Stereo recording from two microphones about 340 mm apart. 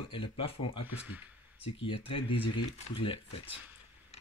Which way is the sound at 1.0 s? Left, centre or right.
Centre.